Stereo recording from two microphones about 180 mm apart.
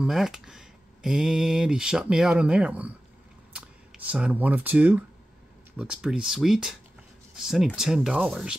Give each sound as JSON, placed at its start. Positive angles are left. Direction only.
{"t": 0.0, "sound": "speech", "side_deg": 0}